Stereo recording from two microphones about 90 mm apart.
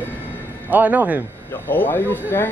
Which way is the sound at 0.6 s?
20° right (ahead or behind).